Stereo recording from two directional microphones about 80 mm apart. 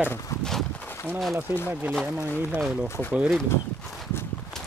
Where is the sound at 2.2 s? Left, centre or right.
Left.